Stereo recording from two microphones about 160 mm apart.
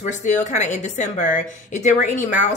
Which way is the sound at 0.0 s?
50° left (ahead or behind).